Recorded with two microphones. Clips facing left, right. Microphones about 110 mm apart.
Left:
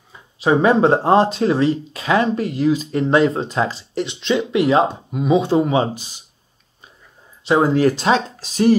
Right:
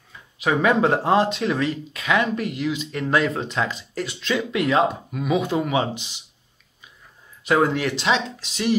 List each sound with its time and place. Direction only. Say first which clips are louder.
0.1 s speech: left 6 dB; 30° left (ahead or behind)
7.4 s speech: left 5 dB; 25° left (ahead or behind)